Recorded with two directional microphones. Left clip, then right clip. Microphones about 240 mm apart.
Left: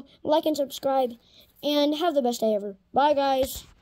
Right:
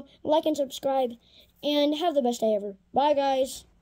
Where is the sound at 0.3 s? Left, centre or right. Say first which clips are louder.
Left 1 dB; centre.